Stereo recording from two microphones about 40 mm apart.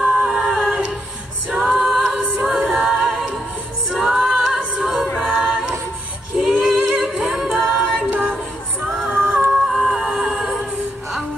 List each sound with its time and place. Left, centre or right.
0.0 s a capella: centre
1.5 s a capella: right
1.8 s a capella: centre
5.3 s music: centre
6.3 s female singing: centre
6.7 s music: centre
7.7 s a capella: centre
8.1 s a sound: right
8.8 s music: centre
9.1 s music: right
9.5 s music: centre
10.5 s music: centre